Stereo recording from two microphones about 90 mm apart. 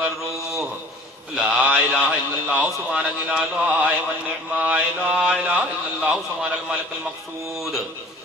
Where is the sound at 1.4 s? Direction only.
15° right (ahead or behind).